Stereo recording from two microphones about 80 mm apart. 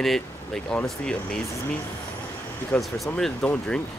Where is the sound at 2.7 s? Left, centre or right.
Centre.